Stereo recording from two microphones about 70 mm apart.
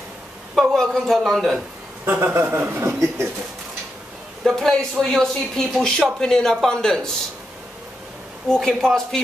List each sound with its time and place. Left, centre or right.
0.6 s a man's voice: centre
2.0 s speech: right
4.5 s speech: centre
8.5 s speech: centre